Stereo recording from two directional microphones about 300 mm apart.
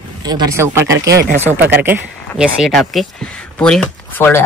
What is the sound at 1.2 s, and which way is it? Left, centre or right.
Speech, right.